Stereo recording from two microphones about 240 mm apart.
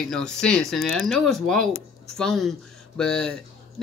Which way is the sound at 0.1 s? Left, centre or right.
Centre.